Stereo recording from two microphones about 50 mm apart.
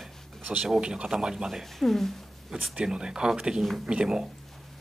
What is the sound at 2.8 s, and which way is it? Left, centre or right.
Speech, centre.